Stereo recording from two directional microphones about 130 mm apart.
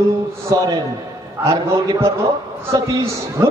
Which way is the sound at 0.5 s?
30° right (ahead or behind).